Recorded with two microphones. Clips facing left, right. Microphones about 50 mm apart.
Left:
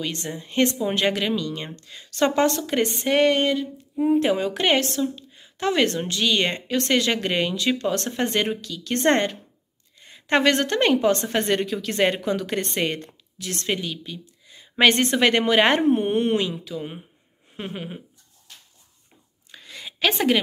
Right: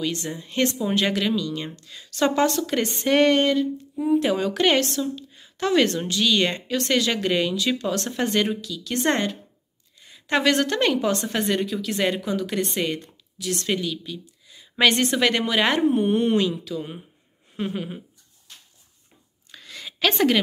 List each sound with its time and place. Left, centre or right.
0.0 s a woman's voice: left
2.7 s speech: left
4.0 s a woman's voice: left
8.5 s a woman's voice: left; by 18.0 s centre
19.5 s a sound: centre